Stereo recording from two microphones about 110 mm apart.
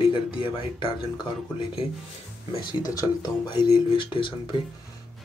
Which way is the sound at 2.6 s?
40° left (ahead or behind).